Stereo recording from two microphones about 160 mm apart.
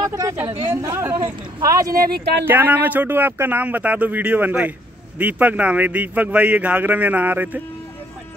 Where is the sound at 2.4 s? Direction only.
10° right (ahead or behind).